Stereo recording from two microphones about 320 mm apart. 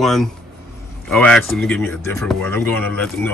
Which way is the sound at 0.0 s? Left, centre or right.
Centre.